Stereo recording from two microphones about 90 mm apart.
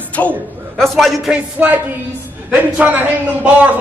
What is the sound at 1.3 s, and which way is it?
A man's voice, 15° right (ahead or behind).